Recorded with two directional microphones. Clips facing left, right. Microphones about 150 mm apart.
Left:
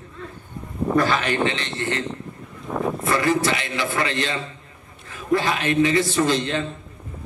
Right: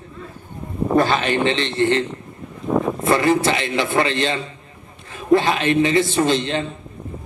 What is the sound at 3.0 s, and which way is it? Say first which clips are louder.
A man's voice: right 3 dB; 25° right (ahead or behind).